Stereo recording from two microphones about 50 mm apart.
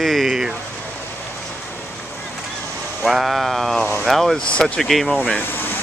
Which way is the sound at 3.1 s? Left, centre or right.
Centre.